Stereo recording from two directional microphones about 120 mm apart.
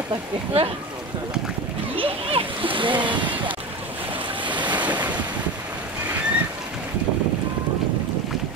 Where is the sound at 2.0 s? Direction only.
50° right (ahead or behind).